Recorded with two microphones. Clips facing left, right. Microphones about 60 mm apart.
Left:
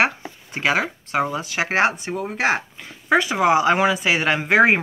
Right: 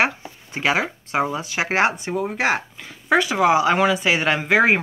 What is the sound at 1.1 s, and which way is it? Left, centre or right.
Speech, centre.